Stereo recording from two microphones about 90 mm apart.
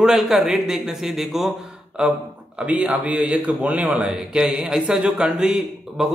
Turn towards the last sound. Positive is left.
turn(degrees=-5)  # may be behind; listen again after turning